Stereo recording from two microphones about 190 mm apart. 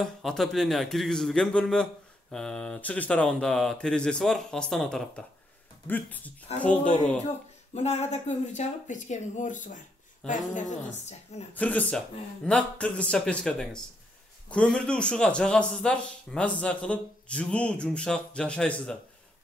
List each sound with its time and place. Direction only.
0.0 s a man's voice: centre (ahead or behind)
7.7 s speech: 35° left (ahead or behind)
11.5 s a man's voice: 10° left (ahead or behind)